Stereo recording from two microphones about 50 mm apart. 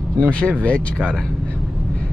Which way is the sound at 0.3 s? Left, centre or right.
Left.